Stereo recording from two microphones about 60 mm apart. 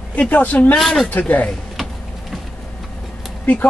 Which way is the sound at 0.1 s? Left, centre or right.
Left.